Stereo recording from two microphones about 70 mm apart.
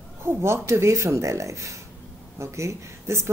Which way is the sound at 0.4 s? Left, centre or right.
Right.